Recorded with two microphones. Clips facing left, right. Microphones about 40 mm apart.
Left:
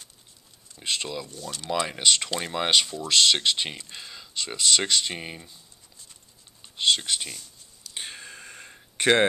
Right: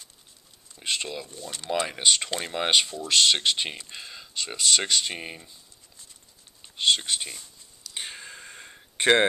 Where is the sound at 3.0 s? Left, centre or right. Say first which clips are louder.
Left 1 dB; centre.